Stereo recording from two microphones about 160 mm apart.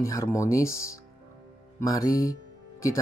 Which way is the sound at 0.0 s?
20° left (ahead or behind).